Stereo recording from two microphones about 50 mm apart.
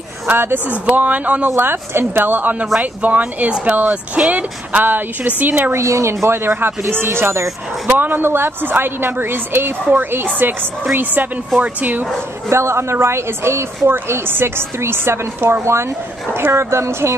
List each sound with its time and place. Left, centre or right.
0.3 s a woman's voice: right
0.7 s a woman's voice: right
1.6 s a woman's voice: right
5.7 s a woman's voice: right
7.8 s a woman's voice: right
12.4 s a woman's voice: right